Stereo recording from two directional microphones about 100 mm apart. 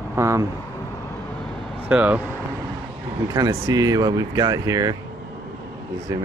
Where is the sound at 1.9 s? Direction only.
15° right (ahead or behind).